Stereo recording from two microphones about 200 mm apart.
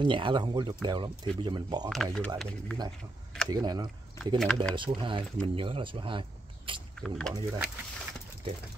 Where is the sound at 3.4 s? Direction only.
20° right (ahead or behind).